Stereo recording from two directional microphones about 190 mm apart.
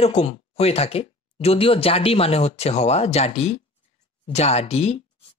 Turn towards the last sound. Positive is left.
turn(degrees=30)  # may be behind; listen again after turning